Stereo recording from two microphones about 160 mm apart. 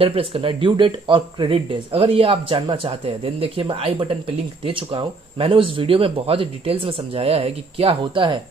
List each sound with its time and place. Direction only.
0.0 s speech: 35° right (ahead or behind)